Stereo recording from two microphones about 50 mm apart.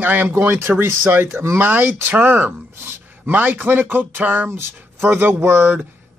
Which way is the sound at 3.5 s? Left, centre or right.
Right.